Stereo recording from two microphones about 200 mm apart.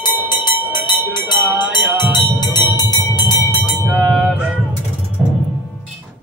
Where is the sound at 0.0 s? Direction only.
20° left (ahead or behind).